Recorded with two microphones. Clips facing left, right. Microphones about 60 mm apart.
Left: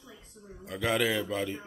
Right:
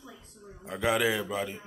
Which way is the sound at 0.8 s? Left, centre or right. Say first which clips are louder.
Right 1 dB; centre.